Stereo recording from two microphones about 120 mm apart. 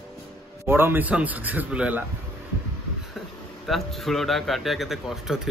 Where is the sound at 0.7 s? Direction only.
20° right (ahead or behind).